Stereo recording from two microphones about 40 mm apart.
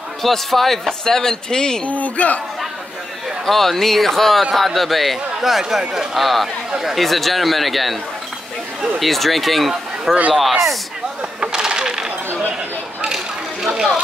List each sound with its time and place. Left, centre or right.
0.2 s speech: centre
1.9 s speech: left
3.4 s speech: centre
9.0 s speech: centre
11.5 s coin: centre
13.1 s a sound: centre